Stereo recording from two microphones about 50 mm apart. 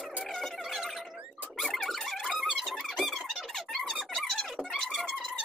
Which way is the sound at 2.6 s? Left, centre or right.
Centre.